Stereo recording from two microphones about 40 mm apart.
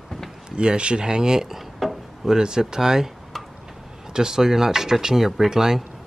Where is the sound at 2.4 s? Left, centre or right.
Centre.